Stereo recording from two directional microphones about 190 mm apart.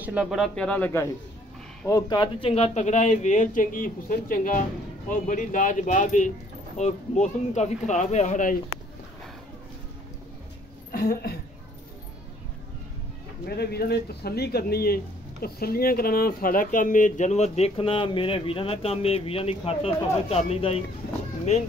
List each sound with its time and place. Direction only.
0.0 s speech: 5° right (ahead or behind)
1.9 s speech: 20° left (ahead or behind); by 8.5 s 40° left (ahead or behind)
10.9 s a woman's voice: 50° left (ahead or behind)
13.5 s speech: 55° left (ahead or behind); by 20.8 s 30° left (ahead or behind)